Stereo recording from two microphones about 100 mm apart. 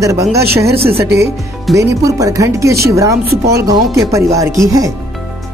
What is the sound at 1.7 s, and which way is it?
Speech, 35° right (ahead or behind).